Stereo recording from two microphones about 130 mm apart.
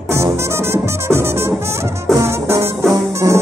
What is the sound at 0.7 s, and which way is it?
Music, 20° right (ahead or behind).